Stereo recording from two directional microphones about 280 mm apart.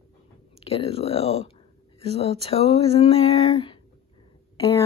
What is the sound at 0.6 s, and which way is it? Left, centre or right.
A woman's voice, left.